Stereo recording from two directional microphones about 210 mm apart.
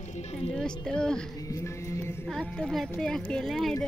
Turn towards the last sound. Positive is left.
turn(degrees=0)  # may be behind; listen again after turning